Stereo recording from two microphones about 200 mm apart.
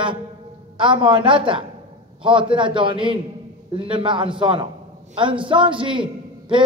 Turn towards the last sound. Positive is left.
turn(degrees=-25)  # may be behind; listen again after turning